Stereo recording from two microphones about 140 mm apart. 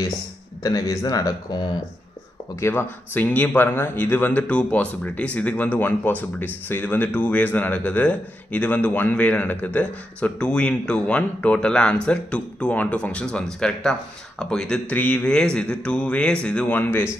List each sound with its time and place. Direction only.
0.6 s speech: 25° left (ahead or behind)
2.6 s a man's voice: 15° left (ahead or behind)